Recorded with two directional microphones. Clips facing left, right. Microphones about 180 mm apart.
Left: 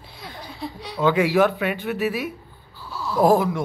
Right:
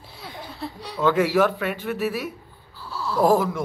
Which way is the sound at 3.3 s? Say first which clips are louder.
Left 1 dB; centre (ahead or behind).